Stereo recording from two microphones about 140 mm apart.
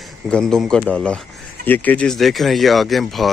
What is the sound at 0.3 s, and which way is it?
Speech, 5° left (ahead or behind).